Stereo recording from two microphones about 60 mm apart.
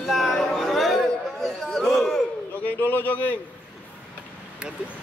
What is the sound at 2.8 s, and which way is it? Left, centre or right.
Speech, left.